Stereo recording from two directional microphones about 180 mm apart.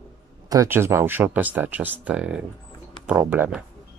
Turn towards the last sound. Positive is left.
turn(degrees=-5)  # may be behind; listen again after turning